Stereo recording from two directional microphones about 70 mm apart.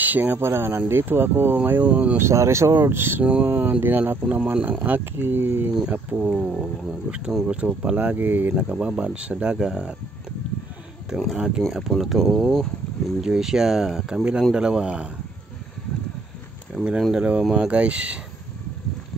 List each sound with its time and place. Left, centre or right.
0.1 s speech: right
2.1 s speech: right
3.3 s speech: centre
5.7 s speech: centre
6.3 s speech: centre
7.1 s speech: centre
8.5 s speech: centre
11.3 s speech: centre
12.0 s speech: centre
16.7 s speech: centre